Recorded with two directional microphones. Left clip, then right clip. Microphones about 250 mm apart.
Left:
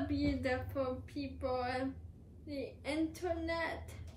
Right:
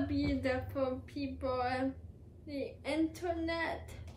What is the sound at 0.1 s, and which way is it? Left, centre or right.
A woman's voice, centre.